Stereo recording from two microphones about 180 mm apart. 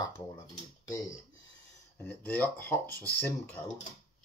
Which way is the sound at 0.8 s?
20° left (ahead or behind).